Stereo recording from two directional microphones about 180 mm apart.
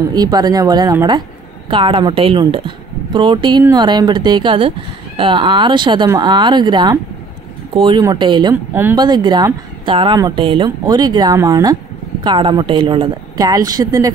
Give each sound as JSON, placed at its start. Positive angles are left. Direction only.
{"t": 0.1, "sound": "speech", "side_deg": -20}